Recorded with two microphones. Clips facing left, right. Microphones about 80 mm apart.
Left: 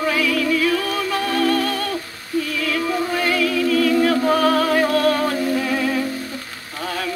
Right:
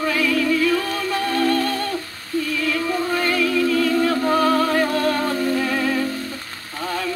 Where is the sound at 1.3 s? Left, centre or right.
Centre.